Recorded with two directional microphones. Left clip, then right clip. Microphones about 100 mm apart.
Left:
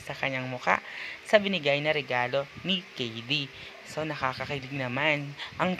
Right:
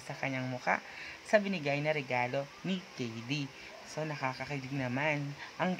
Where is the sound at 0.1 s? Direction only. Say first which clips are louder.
Left 6 dB; 35° left (ahead or behind).